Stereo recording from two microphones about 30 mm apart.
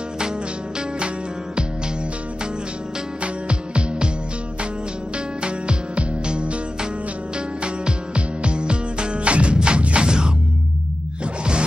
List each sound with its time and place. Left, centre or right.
0.7 s music: right
3.2 s music: right
5.4 s music: right
10.0 s music: right